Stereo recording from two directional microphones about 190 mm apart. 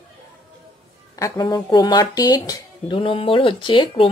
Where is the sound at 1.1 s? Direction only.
20° left (ahead or behind).